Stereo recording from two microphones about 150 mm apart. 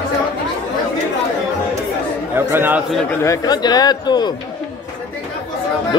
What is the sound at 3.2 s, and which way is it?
A man's voice, 25° left (ahead or behind).